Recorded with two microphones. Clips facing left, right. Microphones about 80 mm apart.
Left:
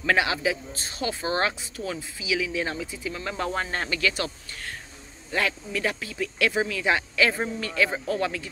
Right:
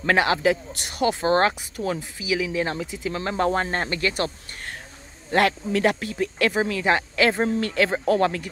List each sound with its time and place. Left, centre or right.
0.0 s speech: right
5.3 s speech: right
6.1 s speech: right